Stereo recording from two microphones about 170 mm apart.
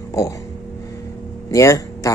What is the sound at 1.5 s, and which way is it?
Speech, 20° left (ahead or behind).